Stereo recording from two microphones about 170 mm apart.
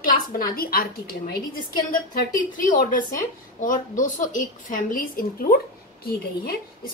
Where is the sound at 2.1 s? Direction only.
50° left (ahead or behind).